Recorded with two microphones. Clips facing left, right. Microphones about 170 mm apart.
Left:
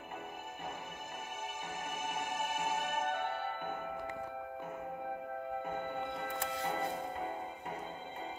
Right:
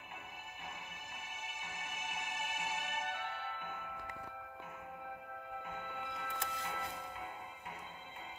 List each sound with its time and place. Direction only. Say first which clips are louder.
1.8 s music: left 6 dB; 50° left (ahead or behind)
5.9 s music: left 6 dB; 40° left (ahead or behind)